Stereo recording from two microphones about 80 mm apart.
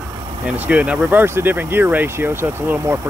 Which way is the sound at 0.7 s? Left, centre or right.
Centre.